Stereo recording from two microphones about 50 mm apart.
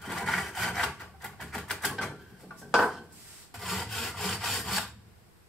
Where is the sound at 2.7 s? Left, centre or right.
Centre.